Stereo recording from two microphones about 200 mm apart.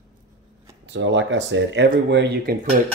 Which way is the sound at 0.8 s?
65° right (ahead or behind).